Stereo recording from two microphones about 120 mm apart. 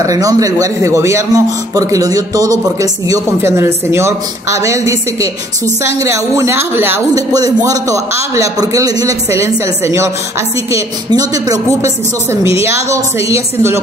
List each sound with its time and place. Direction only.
0.0 s speech: 30° right (ahead or behind)
7.2 s speech: 30° right (ahead or behind)